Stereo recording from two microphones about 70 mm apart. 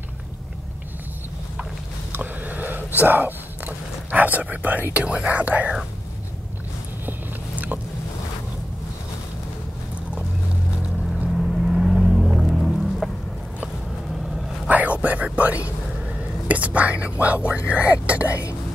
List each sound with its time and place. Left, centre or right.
2.1 s whispering: right
4.9 s speech: centre
11.3 s vehicle: centre
14.7 s whispering: right
17.6 s speech: centre